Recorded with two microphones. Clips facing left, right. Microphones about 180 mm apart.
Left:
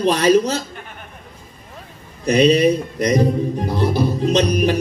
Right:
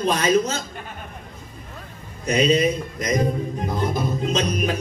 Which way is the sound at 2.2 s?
35° left (ahead or behind).